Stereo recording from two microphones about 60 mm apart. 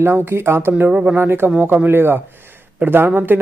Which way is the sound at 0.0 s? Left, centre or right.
Right.